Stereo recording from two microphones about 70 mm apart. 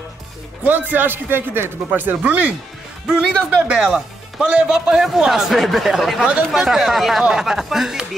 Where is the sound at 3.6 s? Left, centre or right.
Centre.